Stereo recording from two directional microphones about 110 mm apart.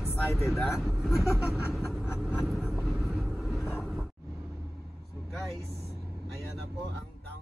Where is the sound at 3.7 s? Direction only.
5° right (ahead or behind).